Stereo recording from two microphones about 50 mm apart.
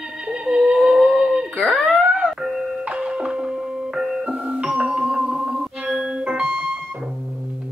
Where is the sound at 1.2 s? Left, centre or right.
Centre.